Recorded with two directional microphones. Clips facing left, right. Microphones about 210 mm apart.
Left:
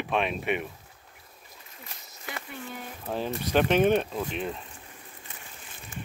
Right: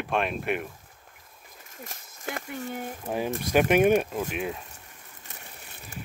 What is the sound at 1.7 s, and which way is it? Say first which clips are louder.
Speech: right 6 dB; 45° right (ahead or behind).